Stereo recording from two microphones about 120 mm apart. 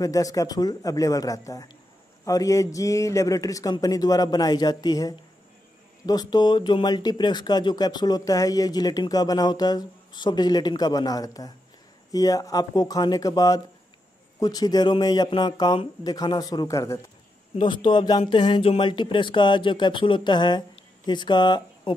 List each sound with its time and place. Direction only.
0.0 s a man's voice: 30° left (ahead or behind)
17.6 s speech: 40° left (ahead or behind)